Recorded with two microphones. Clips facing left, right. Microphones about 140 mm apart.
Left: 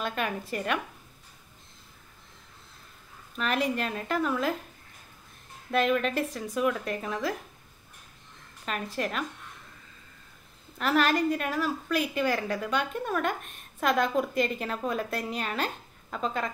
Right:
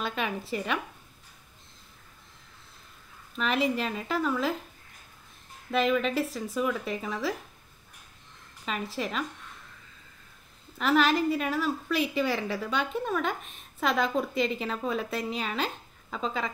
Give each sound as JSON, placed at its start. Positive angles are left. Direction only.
{"t": 0.0, "sound": "a woman's voice", "side_deg": 0}
{"t": 3.5, "sound": "a woman's voice", "side_deg": 45}
{"t": 3.8, "sound": "a woman's voice", "side_deg": 0}
{"t": 5.7, "sound": "a woman's voice", "side_deg": 0}
{"t": 8.6, "sound": "a woman's voice", "side_deg": 0}
{"t": 10.8, "sound": "a woman's voice", "side_deg": 0}
{"t": 14.3, "sound": "a woman's voice", "side_deg": 50}
{"t": 14.6, "sound": "a woman's voice", "side_deg": 0}